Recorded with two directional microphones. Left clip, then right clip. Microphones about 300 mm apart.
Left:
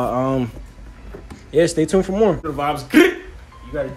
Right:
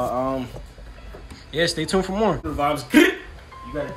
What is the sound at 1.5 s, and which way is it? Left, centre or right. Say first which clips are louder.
Speech: left 6 dB; centre.